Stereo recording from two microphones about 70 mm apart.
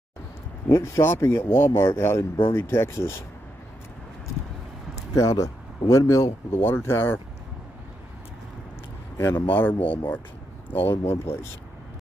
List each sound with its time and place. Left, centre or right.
0.7 s speech: left
5.1 s speech: left
6.6 s speech: left
9.2 s speech: left